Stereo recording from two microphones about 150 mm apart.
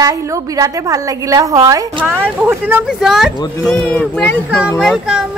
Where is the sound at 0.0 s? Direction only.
25° right (ahead or behind); by 4.4 s 5° left (ahead or behind).